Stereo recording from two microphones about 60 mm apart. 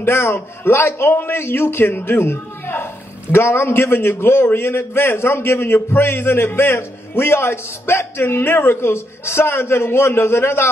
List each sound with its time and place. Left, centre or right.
0.0 s a man's voice: left